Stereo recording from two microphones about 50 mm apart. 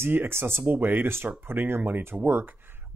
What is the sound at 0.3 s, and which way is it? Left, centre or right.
Speech, right.